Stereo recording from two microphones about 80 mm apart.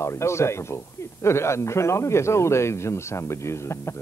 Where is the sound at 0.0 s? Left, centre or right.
Left.